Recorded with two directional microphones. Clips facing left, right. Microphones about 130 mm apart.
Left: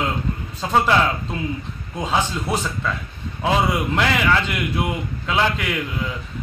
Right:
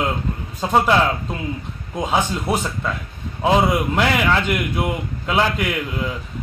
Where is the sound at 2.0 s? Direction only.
15° right (ahead or behind).